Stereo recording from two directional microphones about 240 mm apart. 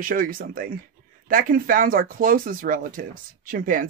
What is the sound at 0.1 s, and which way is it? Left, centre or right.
Speech, right.